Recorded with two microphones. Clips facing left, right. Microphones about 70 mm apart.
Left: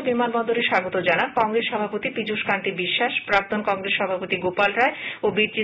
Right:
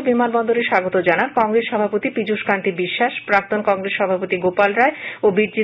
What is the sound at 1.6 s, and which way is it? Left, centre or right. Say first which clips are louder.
Speech: right 6 dB; right.